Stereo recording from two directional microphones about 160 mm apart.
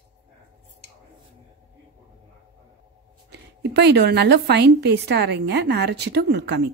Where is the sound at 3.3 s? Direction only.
90° right.